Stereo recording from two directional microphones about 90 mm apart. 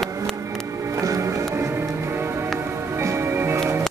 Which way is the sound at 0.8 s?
35° right (ahead or behind).